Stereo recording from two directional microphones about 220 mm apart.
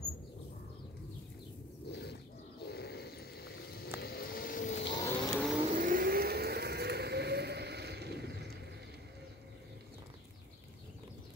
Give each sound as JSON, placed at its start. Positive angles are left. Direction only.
{"t": 1.9, "sound": "a sound", "side_deg": 50}
{"t": 4.0, "sound": "vehicle", "side_deg": 45}
{"t": 4.8, "sound": "vehicle", "side_deg": 20}
{"t": 5.3, "sound": "vehicle", "side_deg": 0}
{"t": 5.7, "sound": "vehicle", "side_deg": -40}